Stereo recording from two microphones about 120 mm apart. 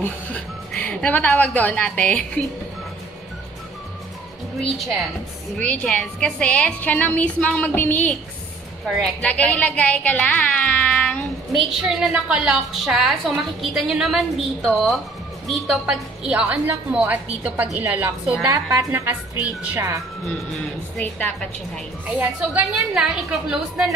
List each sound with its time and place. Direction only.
0.0 s speech: 15° left (ahead or behind)
4.6 s a woman's voice: centre (ahead or behind)
5.6 s a woman's voice: 10° left (ahead or behind)
8.8 s a woman's voice: centre (ahead or behind)
18.5 s a woman's voice: 25° right (ahead or behind); by 19.8 s 10° right (ahead or behind)
21.0 s a woman's voice: 10° left (ahead or behind)
22.8 s a woman's voice: 5° right (ahead or behind)